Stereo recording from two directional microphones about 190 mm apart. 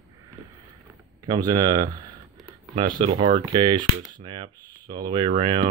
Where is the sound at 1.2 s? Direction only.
20° right (ahead or behind).